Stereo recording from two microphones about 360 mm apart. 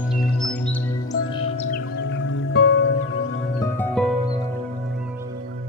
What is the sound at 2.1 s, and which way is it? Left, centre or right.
Music, left.